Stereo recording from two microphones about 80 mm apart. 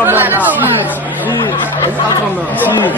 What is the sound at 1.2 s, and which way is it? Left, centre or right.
Speech, left.